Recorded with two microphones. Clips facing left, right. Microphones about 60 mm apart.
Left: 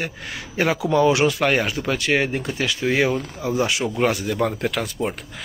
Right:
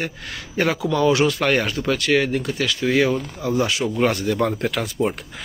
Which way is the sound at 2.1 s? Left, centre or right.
Left.